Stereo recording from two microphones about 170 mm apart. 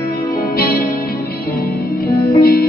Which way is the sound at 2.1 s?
20° left (ahead or behind).